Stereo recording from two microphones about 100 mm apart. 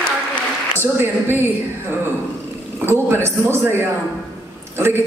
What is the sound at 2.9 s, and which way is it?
Speech, 25° right (ahead or behind).